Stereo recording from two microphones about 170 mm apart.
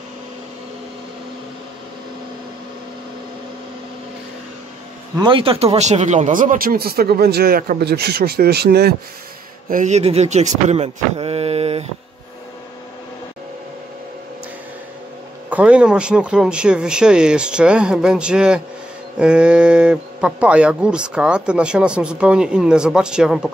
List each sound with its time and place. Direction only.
5.2 s speech: 30° right (ahead or behind); by 8.9 s 70° right (ahead or behind)
9.7 s speech: 45° right (ahead or behind)
15.5 s speech: 5° right (ahead or behind)